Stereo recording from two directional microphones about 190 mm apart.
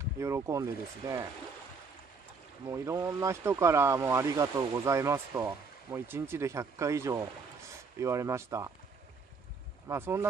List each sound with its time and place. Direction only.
0.0 s speech: 15° right (ahead or behind)
2.6 s speech: 15° right (ahead or behind)
9.8 s speech: 15° right (ahead or behind)